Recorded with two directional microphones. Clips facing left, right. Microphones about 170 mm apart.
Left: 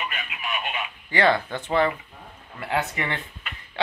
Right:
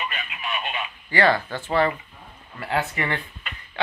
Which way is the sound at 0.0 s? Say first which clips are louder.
Right 1 dB; 10° left (ahead or behind).